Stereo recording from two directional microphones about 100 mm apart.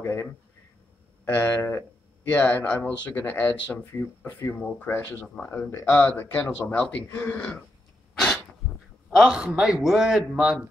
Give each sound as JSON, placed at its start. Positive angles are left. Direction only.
{"t": 0.0, "sound": "speech", "side_deg": 25}
{"t": 8.2, "sound": "speech", "side_deg": 0}